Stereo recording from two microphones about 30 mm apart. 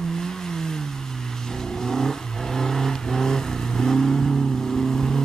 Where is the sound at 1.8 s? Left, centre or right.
Centre.